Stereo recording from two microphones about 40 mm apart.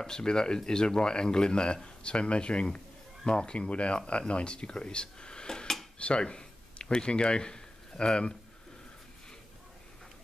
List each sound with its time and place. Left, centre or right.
0.0 s speech: centre